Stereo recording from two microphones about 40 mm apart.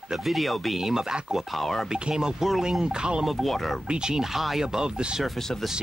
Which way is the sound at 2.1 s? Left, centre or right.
Centre.